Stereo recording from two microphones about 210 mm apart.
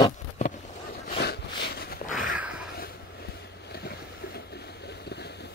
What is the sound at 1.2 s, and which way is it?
Dog, 50° left (ahead or behind).